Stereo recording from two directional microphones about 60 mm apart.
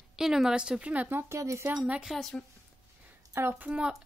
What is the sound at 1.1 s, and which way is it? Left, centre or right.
Speech, right.